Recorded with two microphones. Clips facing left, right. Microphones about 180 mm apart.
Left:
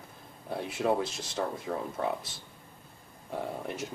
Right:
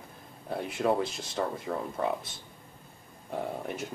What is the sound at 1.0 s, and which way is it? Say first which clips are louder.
Speech: right 1 dB; 55° right (ahead or behind).